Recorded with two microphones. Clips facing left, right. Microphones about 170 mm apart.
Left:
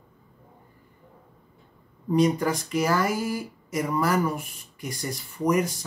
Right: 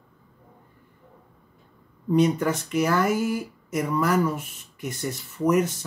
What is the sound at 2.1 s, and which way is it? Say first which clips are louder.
Speech: right 1 dB; 35° left (ahead or behind).